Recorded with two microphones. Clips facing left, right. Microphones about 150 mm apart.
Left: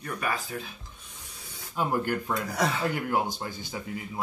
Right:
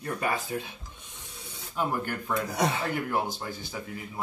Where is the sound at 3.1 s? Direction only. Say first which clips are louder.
Left 1 dB; 15° left (ahead or behind).